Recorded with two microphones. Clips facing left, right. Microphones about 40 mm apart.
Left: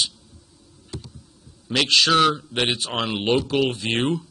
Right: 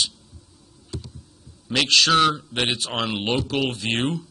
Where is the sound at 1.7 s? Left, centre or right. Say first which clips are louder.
Even; centre.